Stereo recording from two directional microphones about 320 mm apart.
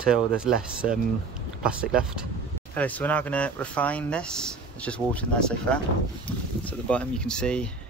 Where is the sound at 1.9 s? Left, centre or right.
Centre.